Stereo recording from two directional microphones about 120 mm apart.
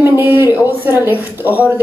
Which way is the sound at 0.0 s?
20° right (ahead or behind).